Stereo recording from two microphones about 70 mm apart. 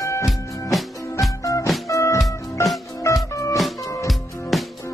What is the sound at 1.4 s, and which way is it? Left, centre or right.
Music, left.